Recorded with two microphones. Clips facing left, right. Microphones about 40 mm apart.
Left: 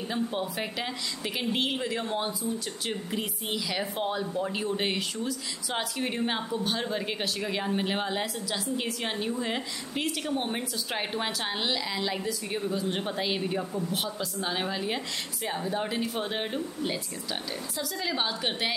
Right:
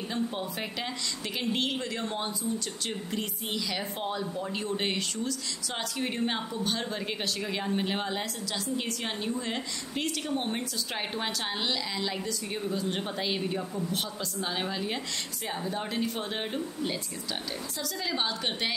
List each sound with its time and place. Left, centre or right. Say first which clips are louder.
0.1 s a woman's voice: left 2 dB; centre